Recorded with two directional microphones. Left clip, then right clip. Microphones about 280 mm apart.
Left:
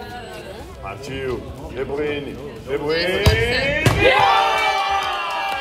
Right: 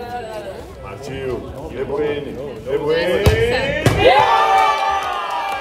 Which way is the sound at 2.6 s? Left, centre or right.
Centre.